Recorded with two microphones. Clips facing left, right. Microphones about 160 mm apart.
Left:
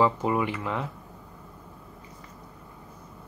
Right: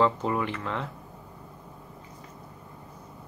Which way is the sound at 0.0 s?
10° left (ahead or behind).